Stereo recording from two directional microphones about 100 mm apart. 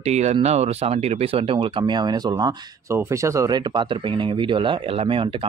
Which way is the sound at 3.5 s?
50° right (ahead or behind).